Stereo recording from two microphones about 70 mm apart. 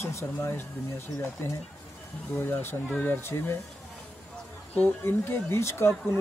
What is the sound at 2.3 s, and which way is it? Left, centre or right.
Speech, left.